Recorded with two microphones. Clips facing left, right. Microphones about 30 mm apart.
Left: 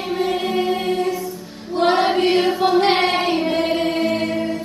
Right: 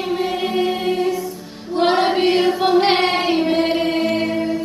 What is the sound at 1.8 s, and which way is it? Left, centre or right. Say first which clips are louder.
Music: even; centre.